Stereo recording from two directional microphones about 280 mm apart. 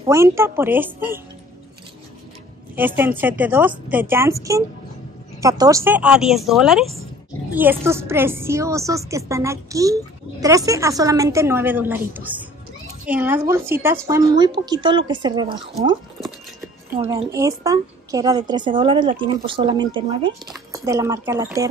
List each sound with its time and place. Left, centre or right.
0.0 s a woman's voice: centre
2.7 s a woman's voice: centre
17.2 s a woman's voice: centre